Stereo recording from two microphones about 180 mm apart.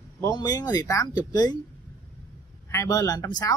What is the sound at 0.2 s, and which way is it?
A man's voice, 20° left (ahead or behind).